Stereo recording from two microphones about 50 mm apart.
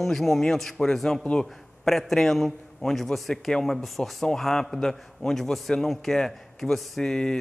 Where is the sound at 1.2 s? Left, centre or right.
Centre.